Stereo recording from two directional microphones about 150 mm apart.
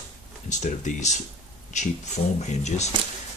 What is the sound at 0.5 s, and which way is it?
Speech, 55° left (ahead or behind).